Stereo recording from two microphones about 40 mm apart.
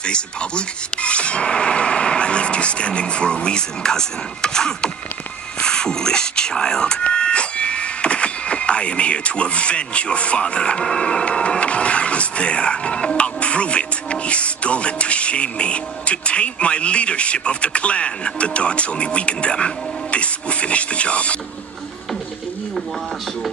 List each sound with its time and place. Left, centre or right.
0.0 s speech: left